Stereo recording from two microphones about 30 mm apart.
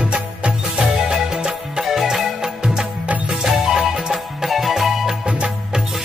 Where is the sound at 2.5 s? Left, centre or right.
Right.